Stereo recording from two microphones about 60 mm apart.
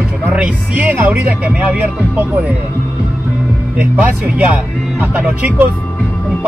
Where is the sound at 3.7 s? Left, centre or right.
Right.